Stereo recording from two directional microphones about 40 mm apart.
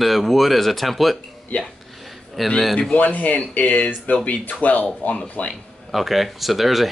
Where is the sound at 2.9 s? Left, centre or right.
Left.